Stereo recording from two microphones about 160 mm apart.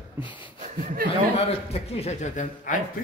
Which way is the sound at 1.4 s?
40° left (ahead or behind).